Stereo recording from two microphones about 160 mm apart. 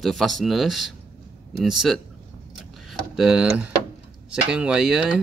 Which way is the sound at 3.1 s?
5° right (ahead or behind).